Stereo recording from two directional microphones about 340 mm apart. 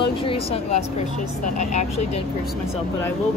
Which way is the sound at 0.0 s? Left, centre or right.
Centre.